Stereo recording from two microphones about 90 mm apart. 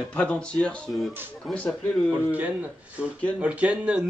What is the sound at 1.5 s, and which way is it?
Speech, 15° left (ahead or behind).